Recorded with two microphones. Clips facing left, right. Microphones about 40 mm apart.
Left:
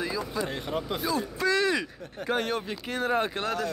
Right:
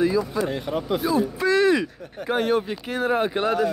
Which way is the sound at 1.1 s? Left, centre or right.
Centre.